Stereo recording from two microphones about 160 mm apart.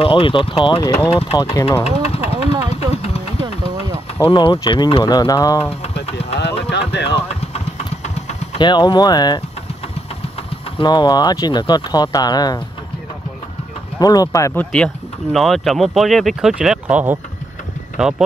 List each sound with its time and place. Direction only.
0.0 s speech: 35° left (ahead or behind)
1.8 s vehicle: 40° left (ahead or behind)
2.7 s a sound: 40° left (ahead or behind)
4.3 s speech: 30° left (ahead or behind)
6.7 s a sound: 90° left
7.2 s engine: 40° left (ahead or behind)
8.5 s speech: 30° left (ahead or behind)
10.8 s speech: 25° left (ahead or behind)
13.9 s speech: 25° left (ahead or behind); by 18.2 s 5° right (ahead or behind)